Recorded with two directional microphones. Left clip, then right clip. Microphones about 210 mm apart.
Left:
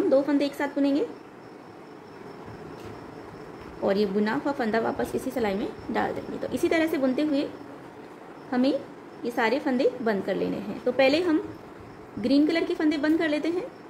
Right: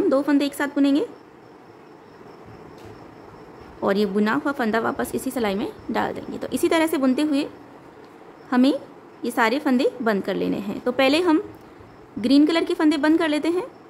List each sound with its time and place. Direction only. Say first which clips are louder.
0.1 s a woman's voice: right 2 dB; 25° right (ahead or behind)
3.8 s a woman's voice: right 3 dB; 25° right (ahead or behind)
8.5 s a woman's voice: right 5 dB; 25° right (ahead or behind)